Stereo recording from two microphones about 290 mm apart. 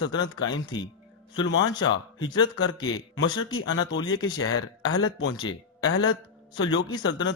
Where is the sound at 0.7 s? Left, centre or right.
Centre.